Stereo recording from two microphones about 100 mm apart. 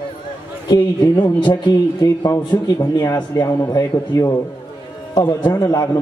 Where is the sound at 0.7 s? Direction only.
50° left (ahead or behind).